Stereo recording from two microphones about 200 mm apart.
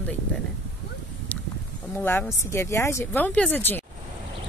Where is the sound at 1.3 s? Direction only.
10° left (ahead or behind).